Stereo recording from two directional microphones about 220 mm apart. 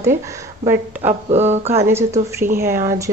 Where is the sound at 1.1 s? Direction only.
30° right (ahead or behind).